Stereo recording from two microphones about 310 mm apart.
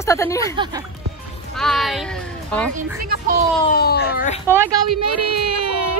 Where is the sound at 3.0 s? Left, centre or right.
Right.